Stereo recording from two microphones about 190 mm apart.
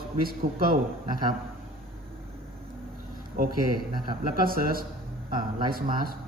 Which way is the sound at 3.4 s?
50° right (ahead or behind).